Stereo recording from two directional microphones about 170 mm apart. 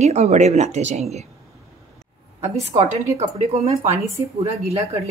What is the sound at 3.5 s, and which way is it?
Speech, 35° right (ahead or behind).